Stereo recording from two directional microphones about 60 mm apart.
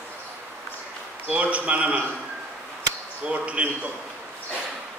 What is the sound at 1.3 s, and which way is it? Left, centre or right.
Speech, right.